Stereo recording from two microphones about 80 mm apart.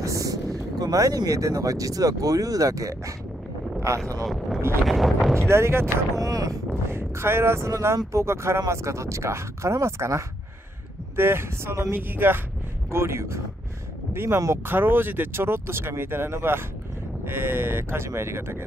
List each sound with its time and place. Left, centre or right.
0.0 s a sound: right
0.7 s speech: right
4.2 s speech: centre
5.5 s speech: right
6.1 s a sound: right
6.9 s speech: right